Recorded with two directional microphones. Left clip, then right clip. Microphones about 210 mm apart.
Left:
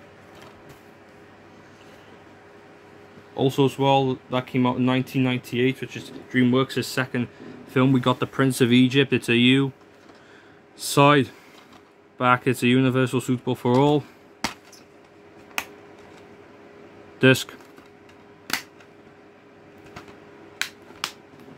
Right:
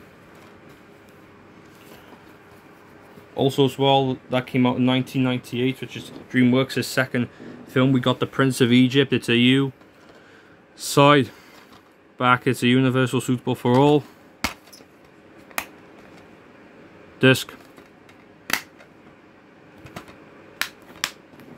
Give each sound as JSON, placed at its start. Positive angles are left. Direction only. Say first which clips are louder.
{"t": 3.3, "sound": "speech", "louder": "right 1 dB", "side_deg": 0}
{"t": 7.7, "sound": "speech", "louder": "even", "side_deg": 0}
{"t": 10.8, "sound": "speech", "louder": "right 2 dB", "side_deg": 0}
{"t": 15.6, "sound": "a sound", "louder": "even", "side_deg": -15}
{"t": 17.2, "sound": "speech", "louder": "right 1 dB", "side_deg": 0}